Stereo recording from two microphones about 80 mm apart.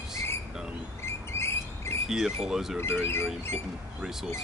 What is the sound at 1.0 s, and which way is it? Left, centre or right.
Cricket, left.